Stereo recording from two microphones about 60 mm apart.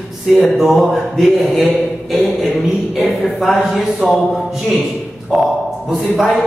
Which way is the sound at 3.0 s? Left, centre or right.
Centre.